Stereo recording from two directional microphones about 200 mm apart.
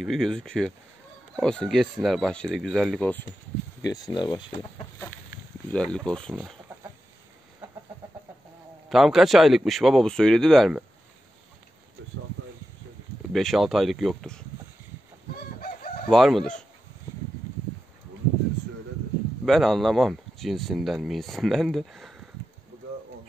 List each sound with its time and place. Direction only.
0.0 s speech: centre (ahead or behind)
3.8 s speech: 20° left (ahead or behind)
5.7 s speech: 5° left (ahead or behind)
8.8 s speech: centre (ahead or behind)
13.3 s speech: centre (ahead or behind)
15.6 s crowing: 45° left (ahead or behind)
16.1 s speech: centre (ahead or behind)
19.4 s speech: centre (ahead or behind)